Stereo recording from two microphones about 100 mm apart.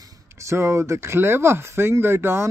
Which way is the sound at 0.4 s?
30° right (ahead or behind).